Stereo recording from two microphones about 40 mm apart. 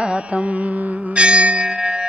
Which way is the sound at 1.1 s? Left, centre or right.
Right.